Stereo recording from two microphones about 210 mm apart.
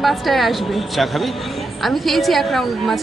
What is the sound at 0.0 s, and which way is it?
Speech, centre (ahead or behind).